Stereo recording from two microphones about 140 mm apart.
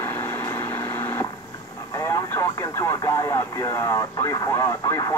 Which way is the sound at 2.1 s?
20° left (ahead or behind).